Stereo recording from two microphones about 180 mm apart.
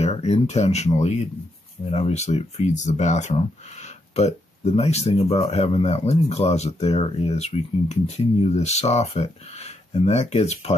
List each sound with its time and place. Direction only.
0.0 s speech: 35° left (ahead or behind)